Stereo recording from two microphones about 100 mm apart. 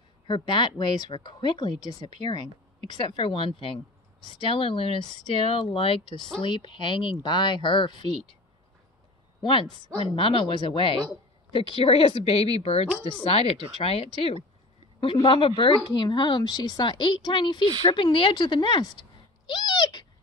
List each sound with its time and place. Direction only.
0.3 s speech: 50° left (ahead or behind)
9.4 s a woman's voice: 55° left (ahead or behind); by 13.1 s 85° left
13.1 s a woman's voice: 70° left (ahead or behind); by 20.1 s 45° left (ahead or behind)